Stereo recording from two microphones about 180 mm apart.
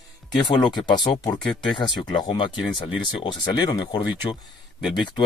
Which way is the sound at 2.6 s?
Centre (ahead or behind).